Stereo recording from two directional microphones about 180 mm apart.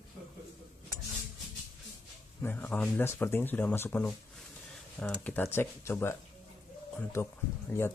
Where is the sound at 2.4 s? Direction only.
10° left (ahead or behind).